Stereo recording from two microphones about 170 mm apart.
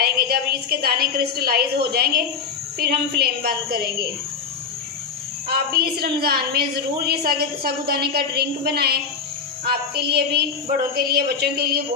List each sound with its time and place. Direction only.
0.0 s a woman's voice: 65° right (ahead or behind)
5.5 s a woman's voice: 65° right (ahead or behind)